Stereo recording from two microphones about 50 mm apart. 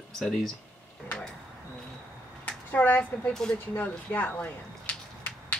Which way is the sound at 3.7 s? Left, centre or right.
Left.